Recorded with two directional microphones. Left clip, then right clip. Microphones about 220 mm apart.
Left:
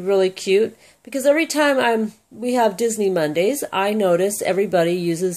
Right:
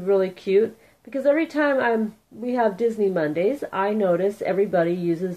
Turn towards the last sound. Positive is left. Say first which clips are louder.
# left 3 dB
turn(degrees=35)  # may be behind; listen again after turning